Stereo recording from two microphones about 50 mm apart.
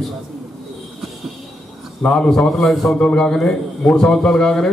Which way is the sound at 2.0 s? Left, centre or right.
Centre.